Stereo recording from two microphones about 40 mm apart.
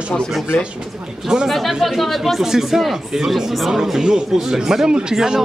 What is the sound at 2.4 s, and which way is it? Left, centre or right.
Speech, centre.